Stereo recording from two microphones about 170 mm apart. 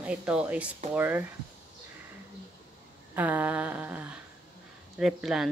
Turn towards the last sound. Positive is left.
turn(degrees=-5)  # may be behind; listen again after turning